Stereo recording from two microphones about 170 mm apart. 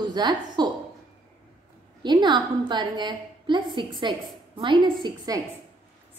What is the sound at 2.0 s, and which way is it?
A woman's voice, 25° right (ahead or behind).